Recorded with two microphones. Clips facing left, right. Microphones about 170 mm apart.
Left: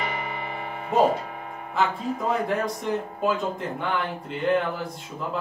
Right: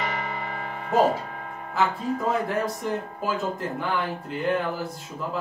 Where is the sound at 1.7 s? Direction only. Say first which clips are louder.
Even; centre (ahead or behind).